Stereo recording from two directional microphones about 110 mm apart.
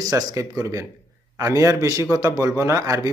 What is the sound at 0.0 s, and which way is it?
A man's voice, 35° right (ahead or behind).